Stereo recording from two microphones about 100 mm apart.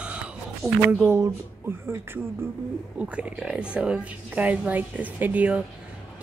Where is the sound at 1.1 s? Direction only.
25° right (ahead or behind).